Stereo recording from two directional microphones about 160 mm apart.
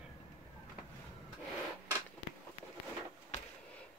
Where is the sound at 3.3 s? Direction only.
45° left (ahead or behind).